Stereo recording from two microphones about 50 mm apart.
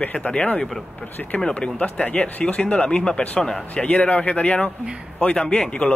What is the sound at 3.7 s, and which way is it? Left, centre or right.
Speech, left.